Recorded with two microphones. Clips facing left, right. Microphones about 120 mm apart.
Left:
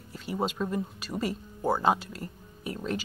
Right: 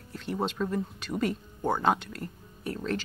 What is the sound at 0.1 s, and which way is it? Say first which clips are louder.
Speech: even; 5° left (ahead or behind).